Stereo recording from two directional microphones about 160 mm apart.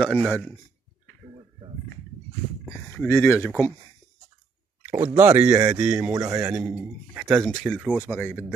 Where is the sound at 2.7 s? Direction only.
15° left (ahead or behind).